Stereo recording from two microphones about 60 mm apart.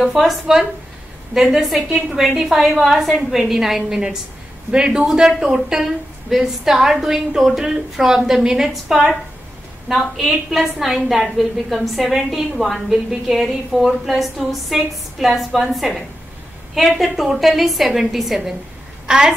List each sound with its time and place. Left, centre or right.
0.0 s a woman's voice: centre
17.0 s a woman's voice: centre